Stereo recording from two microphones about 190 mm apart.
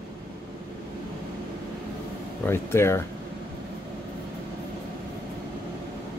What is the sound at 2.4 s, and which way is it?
Speech, 15° left (ahead or behind).